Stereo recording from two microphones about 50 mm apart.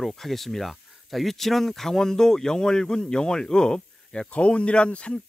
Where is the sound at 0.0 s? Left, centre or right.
Centre.